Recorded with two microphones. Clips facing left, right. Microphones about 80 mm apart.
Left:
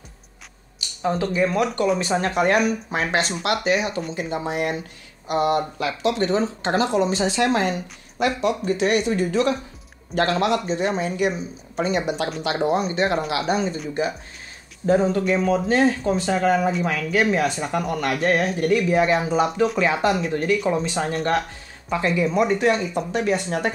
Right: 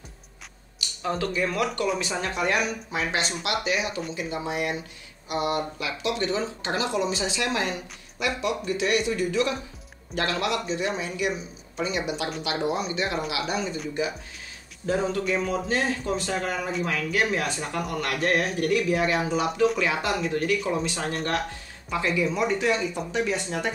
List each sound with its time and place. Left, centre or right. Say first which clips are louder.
0.7 s speech: left 5 dB; left
2.0 s speech: left 7 dB; left
16.8 s speech: left 5 dB; left